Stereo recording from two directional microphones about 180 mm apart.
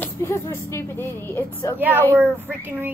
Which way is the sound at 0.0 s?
15° left (ahead or behind).